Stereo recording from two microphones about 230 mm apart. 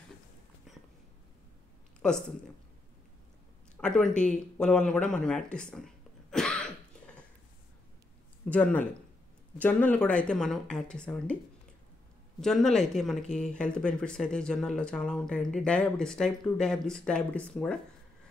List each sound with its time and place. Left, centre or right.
2.0 s speech: centre
3.8 s speech: centre
6.3 s throat clearing: centre
8.5 s speech: centre
12.4 s speech: centre